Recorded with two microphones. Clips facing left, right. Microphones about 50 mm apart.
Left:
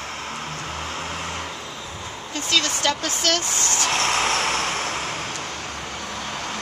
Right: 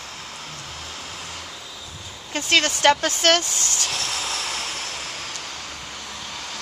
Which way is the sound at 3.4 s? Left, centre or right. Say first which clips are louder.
Left 5 dB; left.